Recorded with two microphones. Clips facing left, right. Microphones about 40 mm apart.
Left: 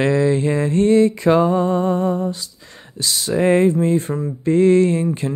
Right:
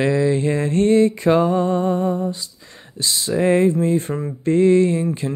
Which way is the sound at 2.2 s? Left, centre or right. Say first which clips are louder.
Left 1 dB; centre.